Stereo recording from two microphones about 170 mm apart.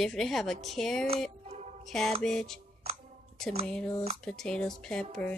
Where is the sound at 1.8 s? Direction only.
Centre (ahead or behind).